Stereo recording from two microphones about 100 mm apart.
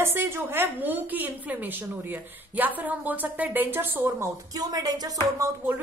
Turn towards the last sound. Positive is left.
turn(degrees=-35)  # may be behind; listen again after turning